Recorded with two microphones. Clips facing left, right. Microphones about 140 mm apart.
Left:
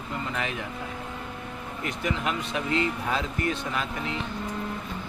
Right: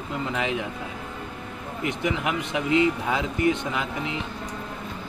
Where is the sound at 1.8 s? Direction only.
15° right (ahead or behind).